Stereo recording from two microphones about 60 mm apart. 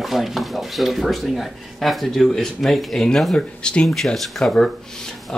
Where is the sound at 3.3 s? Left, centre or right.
Centre.